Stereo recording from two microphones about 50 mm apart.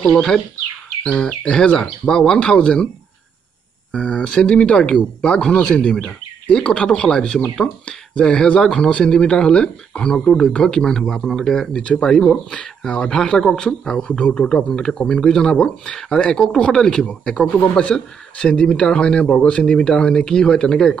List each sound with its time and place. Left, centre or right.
0.1 s speech: centre
3.9 s speech: centre
7.6 s speech: left
8.5 s speech: centre